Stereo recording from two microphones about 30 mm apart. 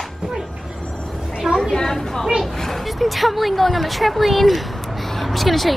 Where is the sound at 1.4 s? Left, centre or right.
Centre.